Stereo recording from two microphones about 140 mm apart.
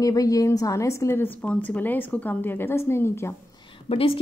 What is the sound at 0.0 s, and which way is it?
A woman's voice, 25° left (ahead or behind).